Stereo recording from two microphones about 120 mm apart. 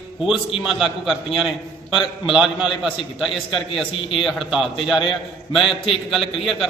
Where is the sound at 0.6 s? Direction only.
5° right (ahead or behind).